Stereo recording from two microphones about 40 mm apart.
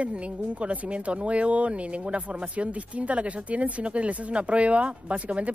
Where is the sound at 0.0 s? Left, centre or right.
Right.